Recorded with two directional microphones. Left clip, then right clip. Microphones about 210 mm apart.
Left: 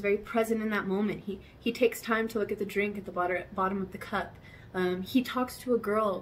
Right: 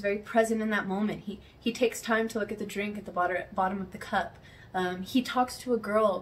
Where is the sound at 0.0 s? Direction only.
5° left (ahead or behind).